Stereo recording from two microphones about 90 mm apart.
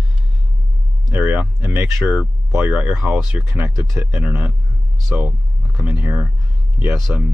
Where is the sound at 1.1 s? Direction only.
25° right (ahead or behind).